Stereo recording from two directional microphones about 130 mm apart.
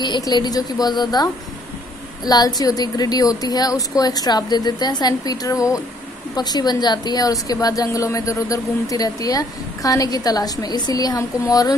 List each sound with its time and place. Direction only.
0.0 s a woman's voice: 35° left (ahead or behind)